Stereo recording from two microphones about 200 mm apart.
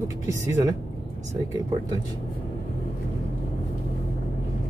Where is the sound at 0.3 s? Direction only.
15° right (ahead or behind).